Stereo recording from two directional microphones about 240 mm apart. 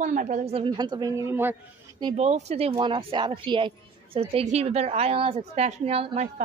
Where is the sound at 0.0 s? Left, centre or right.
Right.